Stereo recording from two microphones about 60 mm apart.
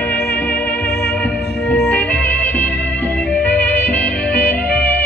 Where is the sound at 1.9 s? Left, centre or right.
Left.